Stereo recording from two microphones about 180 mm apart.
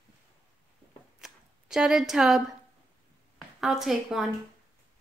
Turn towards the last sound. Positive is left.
turn(degrees=0)  # may be behind; listen again after turning